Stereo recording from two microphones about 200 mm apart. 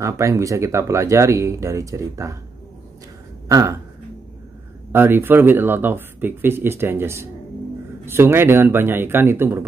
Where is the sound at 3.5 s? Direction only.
15° right (ahead or behind).